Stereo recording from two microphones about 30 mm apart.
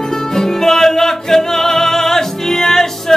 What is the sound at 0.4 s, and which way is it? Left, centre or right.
Music, centre.